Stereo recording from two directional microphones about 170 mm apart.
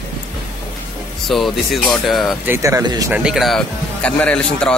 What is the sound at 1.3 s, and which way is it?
Speech, centre (ahead or behind).